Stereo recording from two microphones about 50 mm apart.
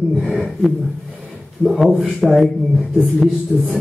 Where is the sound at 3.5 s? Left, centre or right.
Centre.